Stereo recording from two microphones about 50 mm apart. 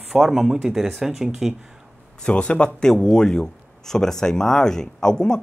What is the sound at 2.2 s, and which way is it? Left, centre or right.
Speech, left.